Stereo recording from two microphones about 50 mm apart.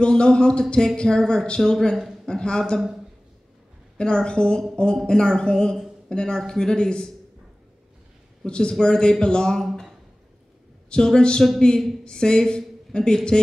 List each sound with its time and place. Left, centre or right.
0.0 s speech: centre
4.0 s speech: centre
8.5 s speech: centre
9.7 s a sound: centre
10.9 s speech: centre